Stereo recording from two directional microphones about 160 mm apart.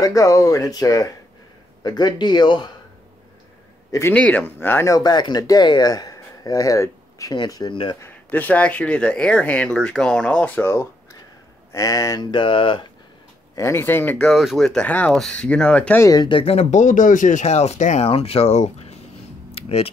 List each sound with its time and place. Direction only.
0.0 s speech: 20° left (ahead or behind)
3.9 s speech: 10° left (ahead or behind); by 8.0 s 30° left (ahead or behind)
8.0 s speech: 10° left (ahead or behind); by 12.8 s 30° left (ahead or behind)
13.6 s speech: 15° left (ahead or behind)
16.0 s speech: 25° left (ahead or behind); by 18.9 s 40° left (ahead or behind)
19.5 s a sound: 35° left (ahead or behind)